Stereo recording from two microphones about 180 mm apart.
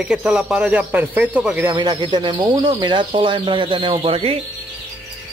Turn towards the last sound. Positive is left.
turn(degrees=-30)  # may be behind; listen again after turning